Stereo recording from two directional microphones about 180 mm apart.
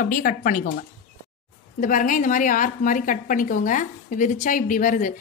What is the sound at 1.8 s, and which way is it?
A woman's voice, 50° left (ahead or behind).